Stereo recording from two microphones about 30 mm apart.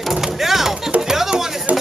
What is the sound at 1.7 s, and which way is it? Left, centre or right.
Music, right.